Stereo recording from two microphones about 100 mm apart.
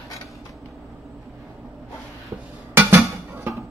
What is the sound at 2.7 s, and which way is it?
Music, 25° right (ahead or behind).